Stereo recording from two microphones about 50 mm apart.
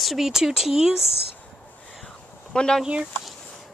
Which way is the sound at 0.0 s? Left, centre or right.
Centre.